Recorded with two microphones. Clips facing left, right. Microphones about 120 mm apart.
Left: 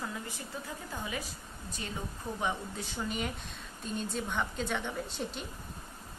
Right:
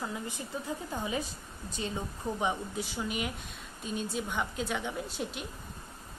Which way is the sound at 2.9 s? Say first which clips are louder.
Left 2 dB; 5° right (ahead or behind).